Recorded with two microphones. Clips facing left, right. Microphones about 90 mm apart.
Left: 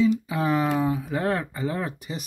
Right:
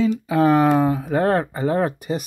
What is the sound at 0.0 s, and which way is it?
Speech, 60° right (ahead or behind).